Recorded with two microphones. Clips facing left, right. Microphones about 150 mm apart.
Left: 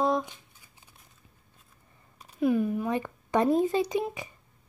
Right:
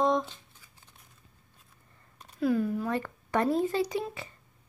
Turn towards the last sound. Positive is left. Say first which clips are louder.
# left 2 dB
turn(degrees=15)  # may be behind; listen again after turning